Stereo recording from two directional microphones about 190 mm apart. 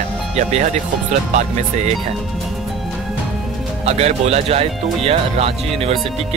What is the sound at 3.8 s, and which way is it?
Speech, 35° right (ahead or behind).